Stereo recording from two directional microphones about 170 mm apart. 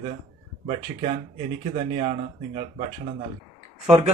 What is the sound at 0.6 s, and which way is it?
Speech, 40° right (ahead or behind).